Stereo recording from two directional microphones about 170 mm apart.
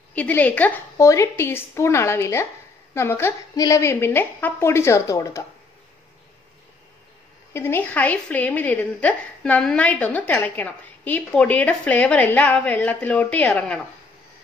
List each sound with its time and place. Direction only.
0.1 s a woman's voice: 10° left (ahead or behind)
7.5 s a woman's voice: 15° left (ahead or behind)